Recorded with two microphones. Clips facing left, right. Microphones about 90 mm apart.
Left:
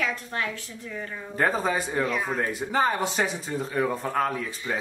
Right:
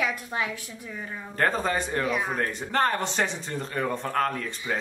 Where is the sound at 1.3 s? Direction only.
5° left (ahead or behind).